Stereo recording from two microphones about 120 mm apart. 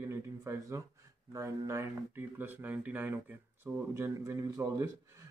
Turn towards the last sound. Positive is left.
turn(degrees=-25)  # may be behind; listen again after turning